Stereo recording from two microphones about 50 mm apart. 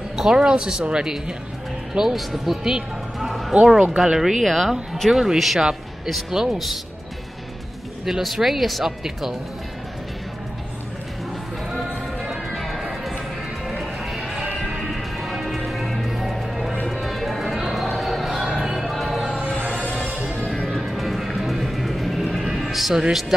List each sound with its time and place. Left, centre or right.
0.3 s speech: centre
3.2 s music: centre
3.5 s speech: centre
8.0 s speech: centre
12.5 s music: centre
20.6 s music: centre